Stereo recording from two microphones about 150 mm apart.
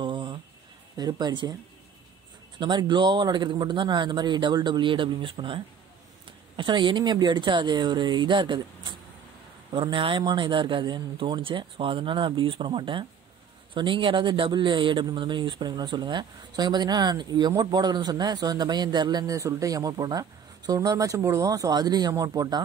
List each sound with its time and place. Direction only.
0.0 s a sound: 30° right (ahead or behind)
0.9 s speech: 25° right (ahead or behind)
2.6 s a man's voice: 30° right (ahead or behind)